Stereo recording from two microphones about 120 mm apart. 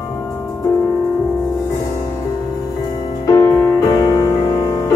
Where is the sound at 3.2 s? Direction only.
25° left (ahead or behind).